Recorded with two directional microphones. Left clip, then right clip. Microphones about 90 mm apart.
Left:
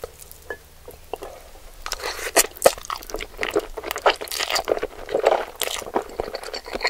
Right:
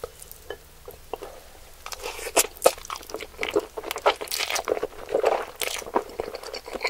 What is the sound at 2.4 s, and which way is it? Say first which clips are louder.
Crunch: left 3 dB; 25° left (ahead or behind).